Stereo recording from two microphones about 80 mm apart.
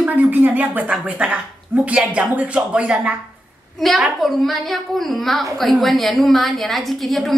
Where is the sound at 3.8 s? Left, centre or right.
Centre.